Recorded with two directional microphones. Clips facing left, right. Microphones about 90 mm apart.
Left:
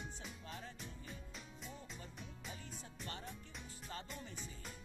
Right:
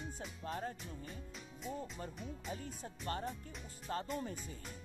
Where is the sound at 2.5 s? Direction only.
45° right (ahead or behind).